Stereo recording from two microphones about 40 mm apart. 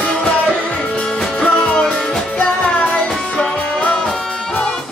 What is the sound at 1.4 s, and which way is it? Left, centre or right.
Music, left.